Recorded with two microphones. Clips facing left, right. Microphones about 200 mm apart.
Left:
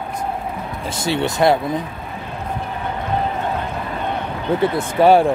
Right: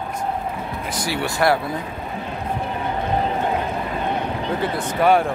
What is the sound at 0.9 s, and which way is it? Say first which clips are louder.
Speech: left 5 dB; 25° left (ahead or behind).